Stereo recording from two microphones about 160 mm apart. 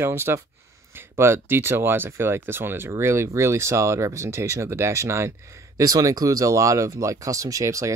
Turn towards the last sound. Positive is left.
turn(degrees=-20)  # may be behind; listen again after turning